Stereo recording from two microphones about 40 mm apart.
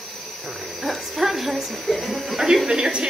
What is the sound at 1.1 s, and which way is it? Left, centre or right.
A woman's voice, centre.